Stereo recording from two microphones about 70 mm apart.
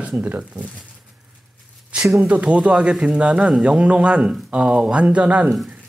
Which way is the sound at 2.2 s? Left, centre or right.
Centre.